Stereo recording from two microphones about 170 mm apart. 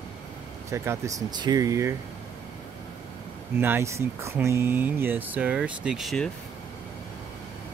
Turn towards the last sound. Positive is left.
turn(degrees=0)  # may be behind; listen again after turning